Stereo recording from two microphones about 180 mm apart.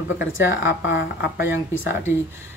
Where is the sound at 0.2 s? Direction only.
90° left.